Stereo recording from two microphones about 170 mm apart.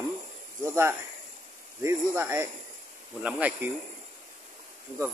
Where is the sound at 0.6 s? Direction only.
15° right (ahead or behind).